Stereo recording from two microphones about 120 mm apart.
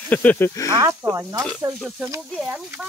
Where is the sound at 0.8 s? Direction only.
25° right (ahead or behind).